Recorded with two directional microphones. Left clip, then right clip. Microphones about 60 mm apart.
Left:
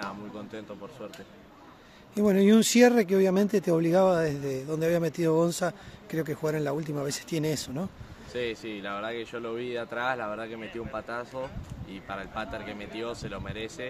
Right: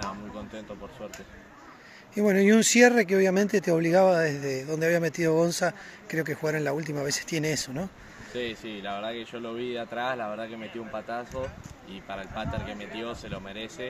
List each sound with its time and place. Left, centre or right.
2.1 s speech: left
8.3 s speech: left